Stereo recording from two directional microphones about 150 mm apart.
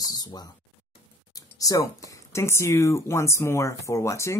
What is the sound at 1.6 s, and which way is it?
Speech, 20° left (ahead or behind).